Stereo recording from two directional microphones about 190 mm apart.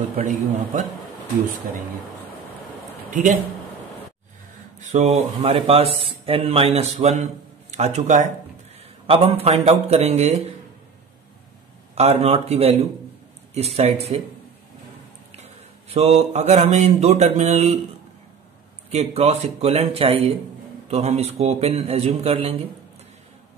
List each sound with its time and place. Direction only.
3.1 s a man's voice: 40° right (ahead or behind)
4.7 s speech: 35° right (ahead or behind)
9.0 s speech: 30° right (ahead or behind)
11.9 s speech: 35° right (ahead or behind)
15.9 s speech: 35° right (ahead or behind)
18.9 s speech: 35° right (ahead or behind)